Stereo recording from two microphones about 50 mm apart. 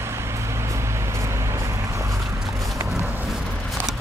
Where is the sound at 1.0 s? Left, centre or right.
Right.